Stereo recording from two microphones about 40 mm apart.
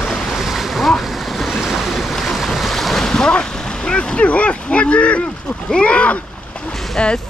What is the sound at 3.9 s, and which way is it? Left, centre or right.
Speech, left.